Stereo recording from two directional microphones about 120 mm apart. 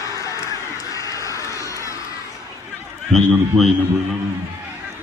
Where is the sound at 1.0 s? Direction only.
25° left (ahead or behind).